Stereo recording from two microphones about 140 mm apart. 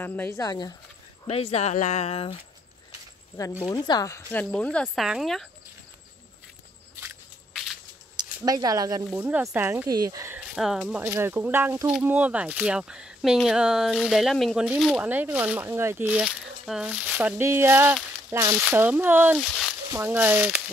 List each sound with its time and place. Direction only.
0.0 s speech: 15° left (ahead or behind)
0.4 s speech: 25° left (ahead or behind)
1.2 s speech: 45° left (ahead or behind)
3.6 s speech: 30° left (ahead or behind)
4.3 s speech: 10° left (ahead or behind)
4.8 s speech: 5° right (ahead or behind)
8.5 s speech: 25° right (ahead or behind)
9.8 s speech: 25° right (ahead or behind)
10.5 s speech: centre (ahead or behind)
11.0 s speech: 15° right (ahead or behind)
16.1 s speech: 5° right (ahead or behind)
19.4 s speech: 5° left (ahead or behind)
19.9 s speech: 15° right (ahead or behind)